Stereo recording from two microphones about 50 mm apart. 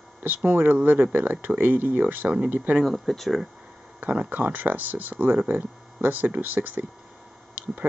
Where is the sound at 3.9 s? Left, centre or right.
Right.